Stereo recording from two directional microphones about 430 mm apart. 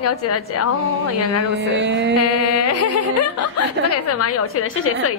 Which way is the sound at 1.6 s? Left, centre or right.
Right.